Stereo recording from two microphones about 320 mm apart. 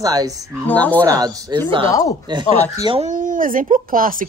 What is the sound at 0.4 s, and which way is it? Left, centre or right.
Speech, centre.